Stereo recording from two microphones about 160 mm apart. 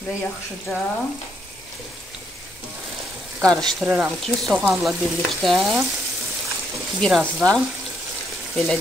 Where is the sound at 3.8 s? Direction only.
5° right (ahead or behind).